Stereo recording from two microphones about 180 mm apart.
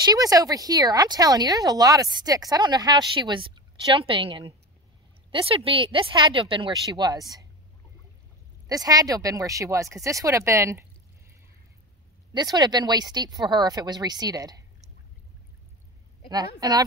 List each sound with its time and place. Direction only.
0.0 s speech: 20° right (ahead or behind)
8.6 s speech: 20° right (ahead or behind)
12.4 s speech: 20° right (ahead or behind)
16.3 s speech: 20° right (ahead or behind)